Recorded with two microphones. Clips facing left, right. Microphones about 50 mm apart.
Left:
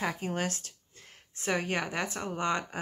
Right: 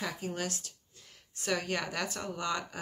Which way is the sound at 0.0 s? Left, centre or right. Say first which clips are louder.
Left 4 dB; left.